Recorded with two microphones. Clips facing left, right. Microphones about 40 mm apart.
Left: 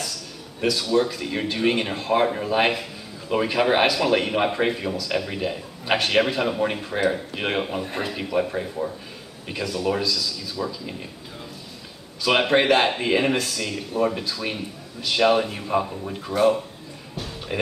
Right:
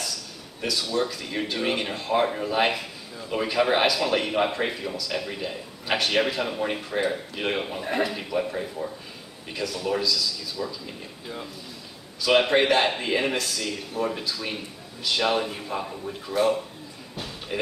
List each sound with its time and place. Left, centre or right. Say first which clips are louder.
0.7 s speech: left 5 dB; centre
12.2 s speech: left 1 dB; centre
17.5 s speech: left 3 dB; centre